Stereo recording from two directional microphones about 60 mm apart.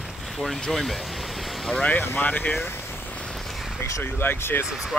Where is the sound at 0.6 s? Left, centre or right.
Centre.